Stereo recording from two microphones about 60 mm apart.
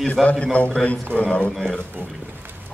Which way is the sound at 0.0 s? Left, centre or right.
Centre.